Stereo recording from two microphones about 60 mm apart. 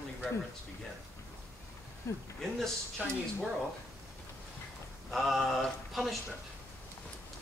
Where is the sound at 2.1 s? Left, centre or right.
Left.